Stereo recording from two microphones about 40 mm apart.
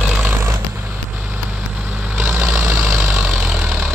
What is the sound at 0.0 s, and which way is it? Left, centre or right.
Vehicle, right.